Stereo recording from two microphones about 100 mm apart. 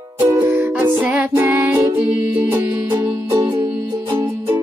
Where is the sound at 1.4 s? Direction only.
20° right (ahead or behind).